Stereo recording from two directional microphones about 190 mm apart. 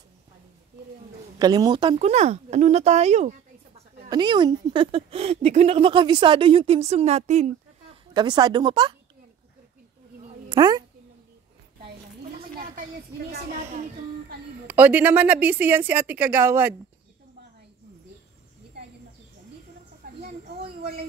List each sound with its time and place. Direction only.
1.4 s speech: 20° right (ahead or behind); by 3.3 s 35° right (ahead or behind)
4.1 s speech: 25° right (ahead or behind)
8.1 s speech: 20° right (ahead or behind)
10.5 s a woman's voice: 20° right (ahead or behind)
14.7 s a woman's voice: 10° right (ahead or behind)
20.2 s a sound: 55° right (ahead or behind)